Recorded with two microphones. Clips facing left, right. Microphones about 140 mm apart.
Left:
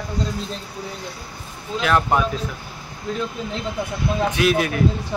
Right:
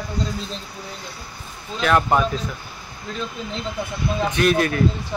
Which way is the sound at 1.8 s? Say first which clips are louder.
Right 1 dB; centre (ahead or behind).